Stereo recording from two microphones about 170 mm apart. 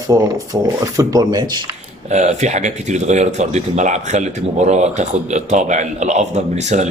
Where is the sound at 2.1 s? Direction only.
45° right (ahead or behind).